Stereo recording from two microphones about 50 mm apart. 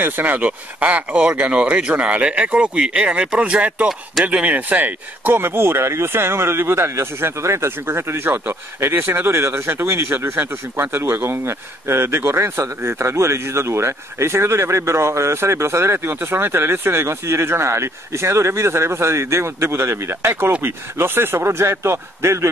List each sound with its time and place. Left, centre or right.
0.0 s speech: right
8.3 s speech: right
16.3 s speech: right